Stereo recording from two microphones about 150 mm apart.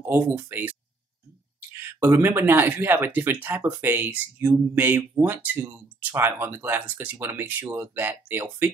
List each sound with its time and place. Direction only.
0.0 s speech: 15° right (ahead or behind)
2.0 s speech: 15° right (ahead or behind)